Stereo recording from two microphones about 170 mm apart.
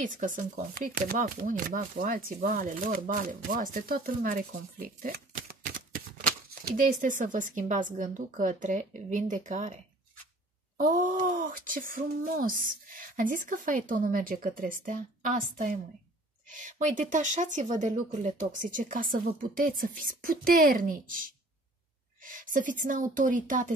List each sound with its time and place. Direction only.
0.0 s speech: 50° right (ahead or behind)
10.8 s speech: 50° right (ahead or behind)